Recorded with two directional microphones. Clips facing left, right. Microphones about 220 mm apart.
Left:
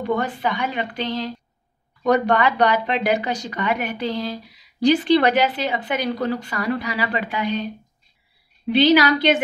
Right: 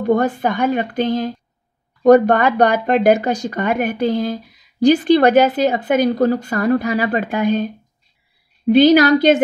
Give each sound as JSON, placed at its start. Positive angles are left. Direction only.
{"t": 0.0, "sound": "speech", "side_deg": -45}